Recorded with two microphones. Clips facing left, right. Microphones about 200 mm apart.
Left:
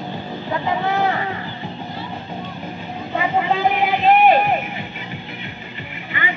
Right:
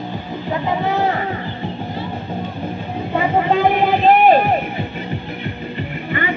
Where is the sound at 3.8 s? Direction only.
35° right (ahead or behind).